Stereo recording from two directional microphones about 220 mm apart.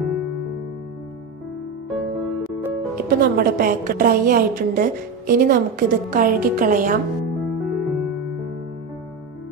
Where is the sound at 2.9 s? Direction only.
40° right (ahead or behind).